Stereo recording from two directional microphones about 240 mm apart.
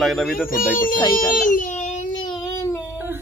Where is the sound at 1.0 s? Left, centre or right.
Centre.